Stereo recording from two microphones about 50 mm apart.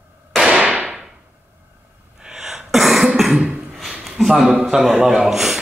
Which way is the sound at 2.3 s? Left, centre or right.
Centre.